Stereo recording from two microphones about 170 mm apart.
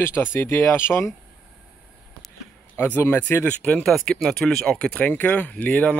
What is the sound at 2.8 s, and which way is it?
Speech, 10° left (ahead or behind).